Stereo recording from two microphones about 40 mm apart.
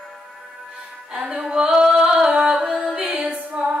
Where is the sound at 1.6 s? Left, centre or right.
Right.